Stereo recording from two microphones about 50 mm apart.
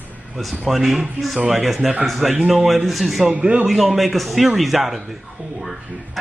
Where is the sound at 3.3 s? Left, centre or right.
Right.